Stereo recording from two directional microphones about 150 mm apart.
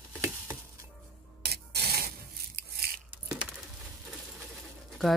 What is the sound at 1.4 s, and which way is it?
Rub, 90° right.